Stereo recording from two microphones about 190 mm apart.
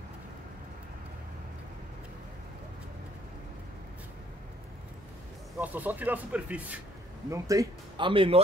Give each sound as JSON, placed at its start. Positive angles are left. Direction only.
{"t": 5.6, "sound": "speech", "side_deg": -10}
{"t": 7.2, "sound": "speech", "side_deg": -15}